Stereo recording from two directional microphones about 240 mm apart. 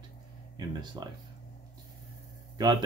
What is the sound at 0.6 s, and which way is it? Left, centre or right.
Speech, centre.